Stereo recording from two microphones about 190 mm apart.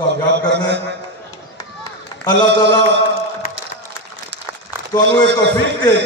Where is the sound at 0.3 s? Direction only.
65° right (ahead or behind).